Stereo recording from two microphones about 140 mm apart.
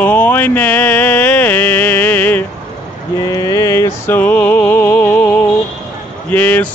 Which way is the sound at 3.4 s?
25° left (ahead or behind).